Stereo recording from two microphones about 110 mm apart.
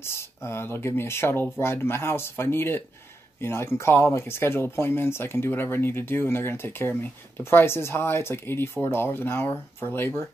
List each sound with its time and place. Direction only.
0.0 s speech: 25° left (ahead or behind)